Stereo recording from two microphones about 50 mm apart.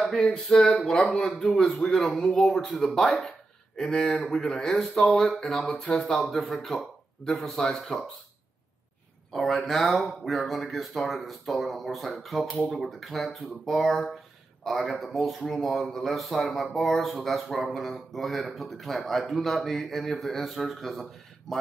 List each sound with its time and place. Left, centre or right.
0.7 s a man's voice: centre
4.0 s speech: left
4.3 s a man's voice: centre
6.1 s speech: centre
9.3 s speech: centre